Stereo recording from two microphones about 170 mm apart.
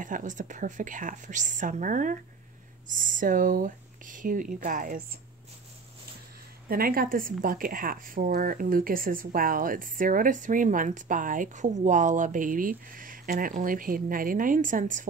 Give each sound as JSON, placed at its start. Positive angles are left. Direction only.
{"t": 0.0, "sound": "a woman's voice", "side_deg": -50}
{"t": 6.7, "sound": "a woman's voice", "side_deg": -60}